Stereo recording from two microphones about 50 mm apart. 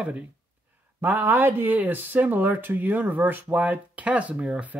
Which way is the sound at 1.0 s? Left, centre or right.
Right.